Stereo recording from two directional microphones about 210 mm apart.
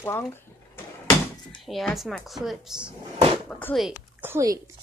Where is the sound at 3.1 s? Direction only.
25° right (ahead or behind).